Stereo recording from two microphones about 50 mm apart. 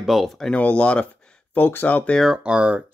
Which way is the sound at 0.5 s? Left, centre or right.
Left.